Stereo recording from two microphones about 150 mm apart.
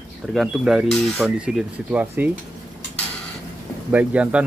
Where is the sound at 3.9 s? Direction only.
10° right (ahead or behind).